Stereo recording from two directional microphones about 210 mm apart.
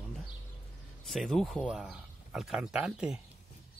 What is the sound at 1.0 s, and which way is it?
Speech, centre (ahead or behind).